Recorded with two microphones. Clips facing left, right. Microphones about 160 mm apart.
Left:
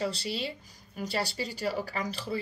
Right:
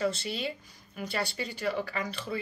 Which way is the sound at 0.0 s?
35° left (ahead or behind).